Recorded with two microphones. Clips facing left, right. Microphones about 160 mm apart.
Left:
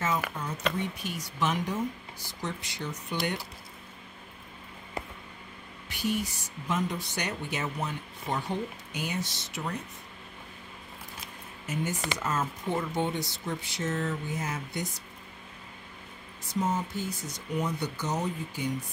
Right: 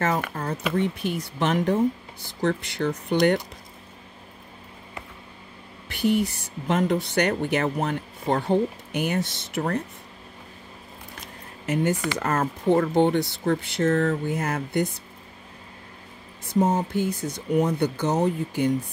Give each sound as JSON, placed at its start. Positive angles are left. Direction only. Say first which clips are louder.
{"t": 0.3, "sound": "a sound", "louder": "right 7 dB", "side_deg": -60}
{"t": 0.7, "sound": "speech", "louder": "right 9 dB", "side_deg": -55}
{"t": 5.9, "sound": "speech", "louder": "right 8 dB", "side_deg": -60}
{"t": 11.6, "sound": "speech", "louder": "right 9 dB", "side_deg": -60}
{"t": 16.5, "sound": "speech", "louder": "right 8 dB", "side_deg": -55}